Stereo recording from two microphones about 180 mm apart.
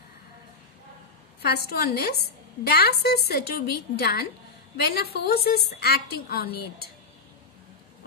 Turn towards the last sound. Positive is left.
turn(degrees=60)  # may be behind; listen again after turning